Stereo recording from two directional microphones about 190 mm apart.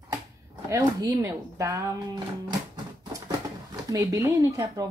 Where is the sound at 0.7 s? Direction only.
20° right (ahead or behind).